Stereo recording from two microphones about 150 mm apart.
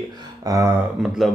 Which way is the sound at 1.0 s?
5° right (ahead or behind).